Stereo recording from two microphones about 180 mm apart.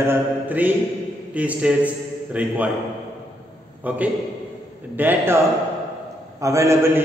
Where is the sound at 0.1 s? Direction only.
10° right (ahead or behind).